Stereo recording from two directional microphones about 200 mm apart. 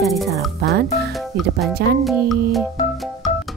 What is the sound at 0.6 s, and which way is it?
Speech, 55° right (ahead or behind).